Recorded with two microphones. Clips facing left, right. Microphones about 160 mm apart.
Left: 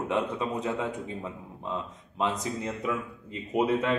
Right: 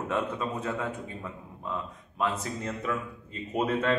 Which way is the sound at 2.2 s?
15° left (ahead or behind).